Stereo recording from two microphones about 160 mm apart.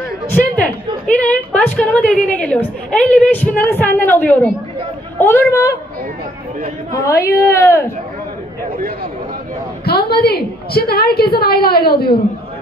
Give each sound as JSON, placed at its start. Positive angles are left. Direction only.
{"t": 0.3, "sound": "a woman's voice", "side_deg": 10}
{"t": 6.9, "sound": "a woman's voice", "side_deg": 20}
{"t": 8.7, "sound": "speech", "side_deg": -70}
{"t": 9.8, "sound": "a woman's voice", "side_deg": 80}